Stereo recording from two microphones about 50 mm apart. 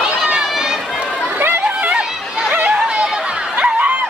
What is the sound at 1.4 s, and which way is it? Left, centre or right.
Chatter, right.